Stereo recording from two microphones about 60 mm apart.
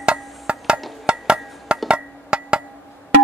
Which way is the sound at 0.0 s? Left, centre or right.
Centre.